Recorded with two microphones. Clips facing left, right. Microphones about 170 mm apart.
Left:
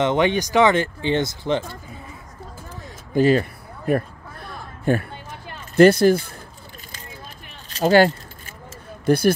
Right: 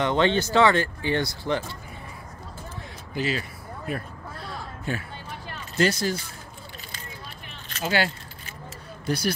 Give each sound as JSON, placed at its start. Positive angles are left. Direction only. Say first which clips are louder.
{"t": 0.0, "sound": "speech", "louder": "left 3 dB", "side_deg": 15}
{"t": 3.2, "sound": "a sound", "louder": "left 12 dB", "side_deg": 50}
{"t": 5.8, "sound": "speech", "louder": "left 11 dB", "side_deg": 55}
{"t": 7.7, "sound": "speech", "louder": "left 11 dB", "side_deg": 40}
{"t": 9.0, "sound": "speech", "louder": "left 9 dB", "side_deg": 55}